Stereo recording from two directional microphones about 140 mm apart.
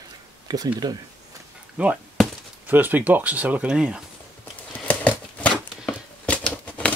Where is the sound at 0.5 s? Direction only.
30° right (ahead or behind).